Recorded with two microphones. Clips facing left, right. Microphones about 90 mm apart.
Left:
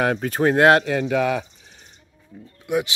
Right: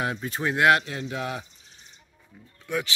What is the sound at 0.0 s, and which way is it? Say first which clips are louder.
Speech: left 9 dB; 60° left (ahead or behind).